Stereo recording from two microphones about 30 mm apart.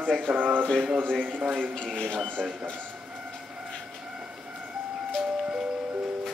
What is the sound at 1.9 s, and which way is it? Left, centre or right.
Speech, left.